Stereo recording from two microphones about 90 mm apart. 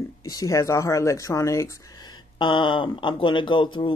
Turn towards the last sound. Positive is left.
turn(degrees=65)  # may be behind; listen again after turning